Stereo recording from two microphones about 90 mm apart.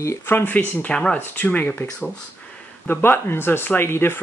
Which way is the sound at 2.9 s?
25° left (ahead or behind).